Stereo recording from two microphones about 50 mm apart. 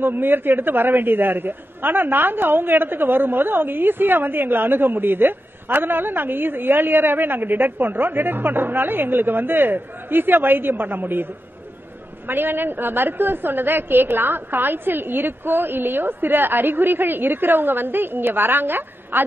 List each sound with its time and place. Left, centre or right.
0.0 s a man's voice: right
12.3 s a man's voice: right